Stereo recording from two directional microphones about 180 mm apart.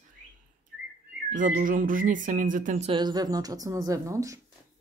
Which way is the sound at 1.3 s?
50° right (ahead or behind).